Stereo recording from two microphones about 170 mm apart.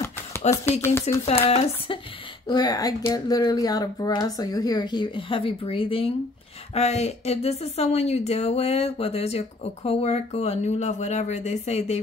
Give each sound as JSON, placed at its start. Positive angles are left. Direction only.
{"t": 0.5, "sound": "speech", "side_deg": 15}
{"t": 1.2, "sound": "speech", "side_deg": 35}
{"t": 2.4, "sound": "speech", "side_deg": 25}